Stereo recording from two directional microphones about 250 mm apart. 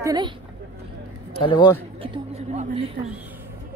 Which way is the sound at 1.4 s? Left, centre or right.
Centre.